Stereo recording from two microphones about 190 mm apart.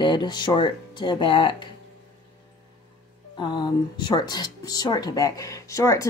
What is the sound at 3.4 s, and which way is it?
Speech, 25° left (ahead or behind).